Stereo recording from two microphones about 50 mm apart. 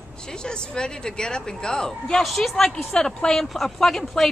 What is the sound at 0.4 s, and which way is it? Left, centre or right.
Speech, centre.